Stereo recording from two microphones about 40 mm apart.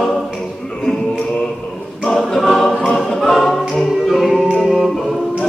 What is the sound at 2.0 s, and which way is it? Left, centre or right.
Choir, centre.